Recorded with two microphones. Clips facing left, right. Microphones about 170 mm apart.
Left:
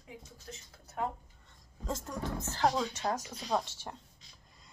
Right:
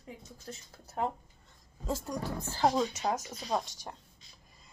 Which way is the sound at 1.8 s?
10° right (ahead or behind).